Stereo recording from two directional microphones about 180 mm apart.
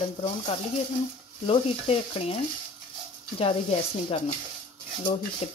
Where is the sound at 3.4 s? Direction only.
30° left (ahead or behind).